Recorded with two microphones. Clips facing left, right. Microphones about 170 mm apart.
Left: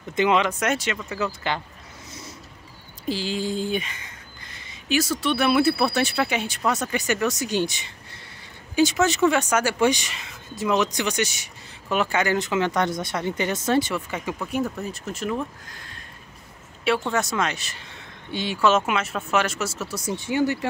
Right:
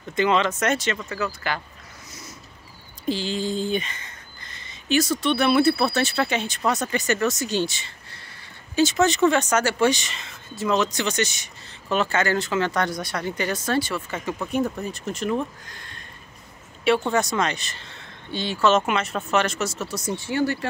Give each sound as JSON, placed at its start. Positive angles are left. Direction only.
{"t": 0.1, "sound": "speech", "side_deg": 15}
{"t": 3.1, "sound": "speech", "side_deg": 5}
{"t": 14.4, "sound": "speech", "side_deg": 5}
{"t": 17.1, "sound": "speech", "side_deg": 5}